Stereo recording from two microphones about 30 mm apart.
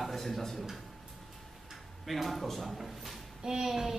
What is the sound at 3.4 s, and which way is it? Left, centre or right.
Speech, right.